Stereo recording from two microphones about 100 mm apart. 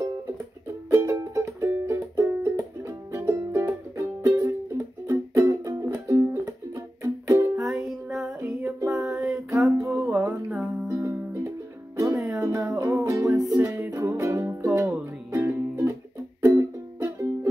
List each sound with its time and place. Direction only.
0.8 s music: 25° right (ahead or behind)
7.5 s music: 5° right (ahead or behind)
8.4 s music: 15° right (ahead or behind)
9.5 s music: 30° right (ahead or behind)
9.8 s music: 15° right (ahead or behind)
10.9 s music: 25° right (ahead or behind)
12.4 s music: 30° right (ahead or behind)